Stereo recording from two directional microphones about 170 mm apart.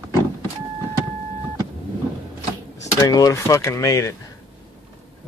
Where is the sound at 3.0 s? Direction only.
20° left (ahead or behind).